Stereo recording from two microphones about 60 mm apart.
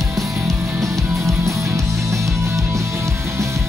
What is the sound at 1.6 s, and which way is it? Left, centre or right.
Music, right.